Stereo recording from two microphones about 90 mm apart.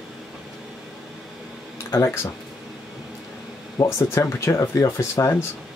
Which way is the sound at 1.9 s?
25° left (ahead or behind).